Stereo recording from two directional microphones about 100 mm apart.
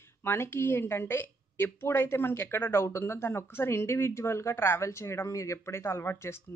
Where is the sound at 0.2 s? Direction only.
25° left (ahead or behind).